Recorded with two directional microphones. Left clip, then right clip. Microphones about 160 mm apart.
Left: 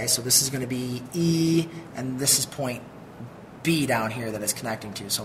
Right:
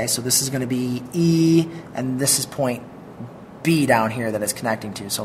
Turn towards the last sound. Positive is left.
turn(degrees=0)  # may be behind; listen again after turning